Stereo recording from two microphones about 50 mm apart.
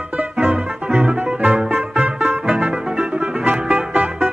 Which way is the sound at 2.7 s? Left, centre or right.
Centre.